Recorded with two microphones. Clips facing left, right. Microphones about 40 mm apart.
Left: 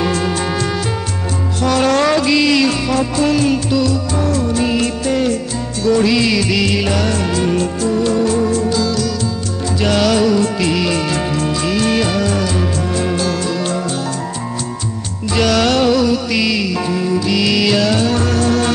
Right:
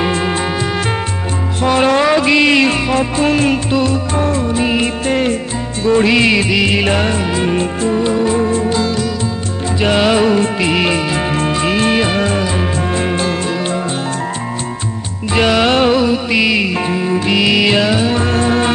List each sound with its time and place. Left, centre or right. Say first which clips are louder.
0.0 s music: right 1 dB; right
1.6 s music: right 2 dB; right
2.2 s music: right 2 dB; right
11.3 s music: right 2 dB; right
15.3 s music: right 2 dB; right